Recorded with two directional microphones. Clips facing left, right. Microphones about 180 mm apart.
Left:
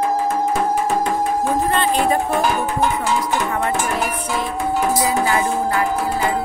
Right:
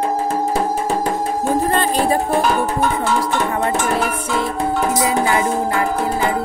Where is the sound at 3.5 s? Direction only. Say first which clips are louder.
Right 2 dB; 35° right (ahead or behind).